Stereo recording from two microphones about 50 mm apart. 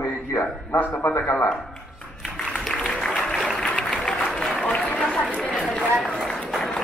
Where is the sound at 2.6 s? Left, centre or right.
Centre.